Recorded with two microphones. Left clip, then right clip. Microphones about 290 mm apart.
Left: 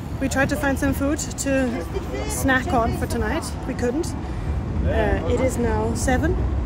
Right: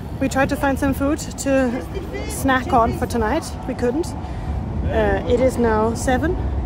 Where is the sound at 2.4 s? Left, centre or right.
Centre.